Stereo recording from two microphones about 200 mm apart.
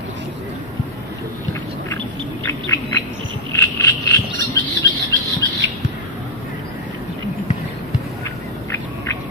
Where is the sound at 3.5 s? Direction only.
15° left (ahead or behind).